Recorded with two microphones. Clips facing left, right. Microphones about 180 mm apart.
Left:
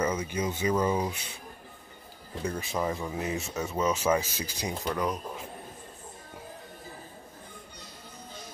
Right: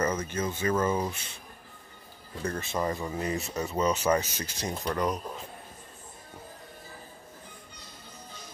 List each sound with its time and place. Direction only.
0.0 s speech: 10° left (ahead or behind)
2.4 s speech: 10° left (ahead or behind)